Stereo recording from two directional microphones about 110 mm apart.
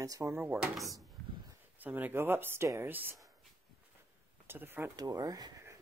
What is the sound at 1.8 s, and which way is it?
Speech, 15° right (ahead or behind).